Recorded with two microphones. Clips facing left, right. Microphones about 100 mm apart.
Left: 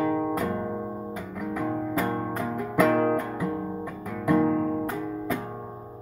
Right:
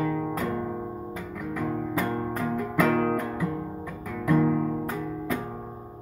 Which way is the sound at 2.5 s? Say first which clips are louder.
Left 2 dB; 15° left (ahead or behind).